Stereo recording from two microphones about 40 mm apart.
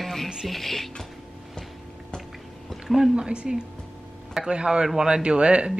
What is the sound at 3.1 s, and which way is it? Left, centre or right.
Speech, right.